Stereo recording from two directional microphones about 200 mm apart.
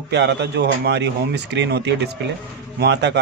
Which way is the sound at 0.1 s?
60° right (ahead or behind).